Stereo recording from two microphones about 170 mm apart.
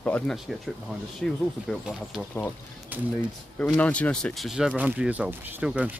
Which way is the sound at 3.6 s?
10° left (ahead or behind).